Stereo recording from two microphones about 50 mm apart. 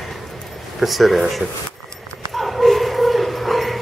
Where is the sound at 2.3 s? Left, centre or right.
Centre.